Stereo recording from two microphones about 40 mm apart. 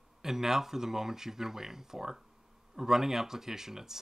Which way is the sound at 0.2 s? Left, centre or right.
Centre.